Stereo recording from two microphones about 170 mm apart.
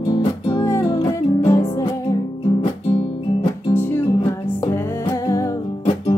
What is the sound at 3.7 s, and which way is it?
Music, 15° left (ahead or behind).